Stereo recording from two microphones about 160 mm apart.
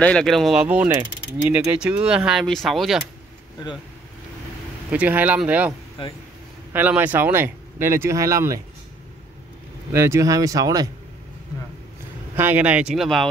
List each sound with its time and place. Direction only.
0.0 s speech: 5° left (ahead or behind)
4.9 s speech: 10° right (ahead or behind)
9.9 s speech: 15° right (ahead or behind)
12.4 s speech: 10° right (ahead or behind)